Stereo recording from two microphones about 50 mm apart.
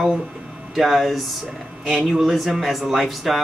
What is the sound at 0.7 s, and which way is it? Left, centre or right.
Speech, centre.